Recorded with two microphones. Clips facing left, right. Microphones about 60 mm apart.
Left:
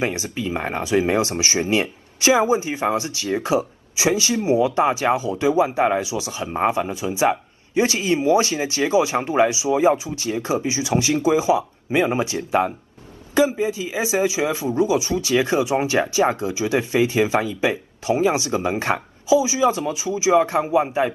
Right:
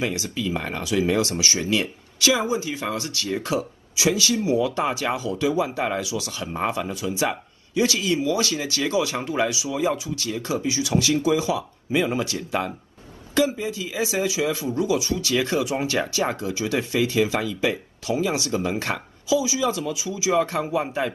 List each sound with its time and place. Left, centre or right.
0.0 s speech: left